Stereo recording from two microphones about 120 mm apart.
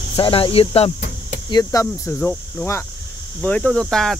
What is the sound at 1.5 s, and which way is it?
Speech, 30° left (ahead or behind).